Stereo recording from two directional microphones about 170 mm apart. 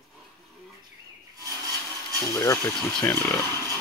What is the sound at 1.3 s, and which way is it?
Wood, 20° right (ahead or behind).